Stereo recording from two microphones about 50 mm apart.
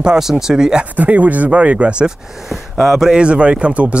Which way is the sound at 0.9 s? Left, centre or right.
Right.